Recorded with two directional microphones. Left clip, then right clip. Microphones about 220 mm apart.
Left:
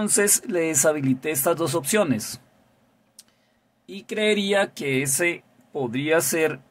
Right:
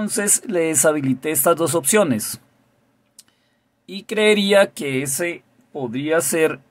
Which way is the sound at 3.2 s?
15° right (ahead or behind).